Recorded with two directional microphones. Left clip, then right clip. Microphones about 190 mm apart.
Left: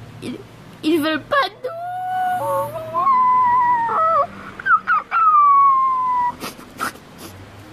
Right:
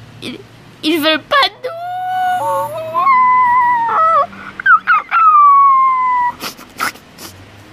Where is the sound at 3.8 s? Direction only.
Centre (ahead or behind).